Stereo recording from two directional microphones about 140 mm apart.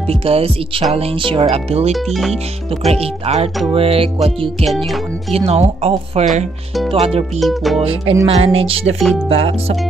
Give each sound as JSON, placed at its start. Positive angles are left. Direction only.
{"t": 0.1, "sound": "speech", "side_deg": -45}
{"t": 1.9, "sound": "speech", "side_deg": 0}
{"t": 2.9, "sound": "speech", "side_deg": -50}
{"t": 7.3, "sound": "speech", "side_deg": 0}
{"t": 7.8, "sound": "music", "side_deg": -40}
{"t": 8.3, "sound": "speech", "side_deg": -45}